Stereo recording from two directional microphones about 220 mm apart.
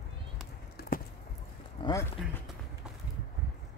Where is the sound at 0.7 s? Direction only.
40° left (ahead or behind).